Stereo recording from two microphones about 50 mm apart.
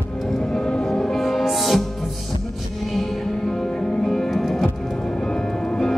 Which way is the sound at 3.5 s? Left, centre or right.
Centre.